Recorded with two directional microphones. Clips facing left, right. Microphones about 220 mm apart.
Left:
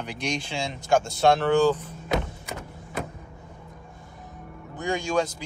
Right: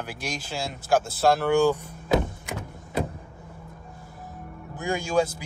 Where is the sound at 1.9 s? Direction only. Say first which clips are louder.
Right 4 dB; 50° right (ahead or behind).